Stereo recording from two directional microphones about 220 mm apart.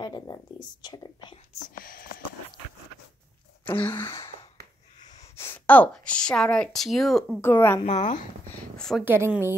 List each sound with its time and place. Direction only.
0.0 s speech: 20° left (ahead or behind)
1.7 s whispering: 40° left (ahead or behind)
3.6 s a sound: 10° left (ahead or behind)
5.0 s a woman's voice: 15° left (ahead or behind)
7.8 s speech: 30° left (ahead or behind)
8.7 s a woman's voice: centre (ahead or behind)
9.0 s a woman's voice: 10° right (ahead or behind)